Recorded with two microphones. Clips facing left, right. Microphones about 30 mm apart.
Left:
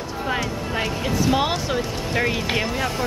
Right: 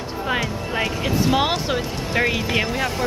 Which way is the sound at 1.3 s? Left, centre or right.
Centre.